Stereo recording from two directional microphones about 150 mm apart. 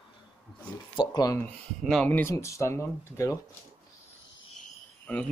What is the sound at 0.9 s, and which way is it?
Speech, 25° left (ahead or behind).